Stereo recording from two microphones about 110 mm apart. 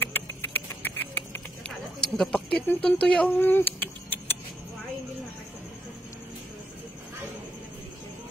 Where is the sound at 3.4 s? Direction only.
20° left (ahead or behind).